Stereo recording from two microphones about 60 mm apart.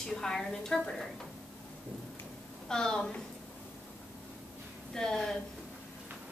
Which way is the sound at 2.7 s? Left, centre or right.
Centre.